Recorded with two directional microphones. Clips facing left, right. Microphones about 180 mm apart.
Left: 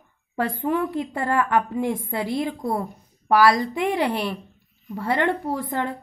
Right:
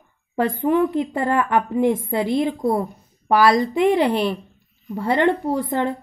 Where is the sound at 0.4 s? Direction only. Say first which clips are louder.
Right 5 dB; 25° right (ahead or behind).